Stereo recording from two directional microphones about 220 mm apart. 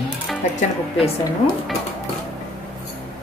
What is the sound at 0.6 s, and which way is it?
Speech, 25° left (ahead or behind).